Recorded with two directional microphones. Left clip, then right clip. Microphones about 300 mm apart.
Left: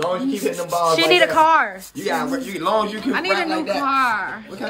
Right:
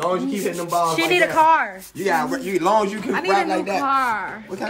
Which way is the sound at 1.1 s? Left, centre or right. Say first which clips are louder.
Left 1 dB; centre.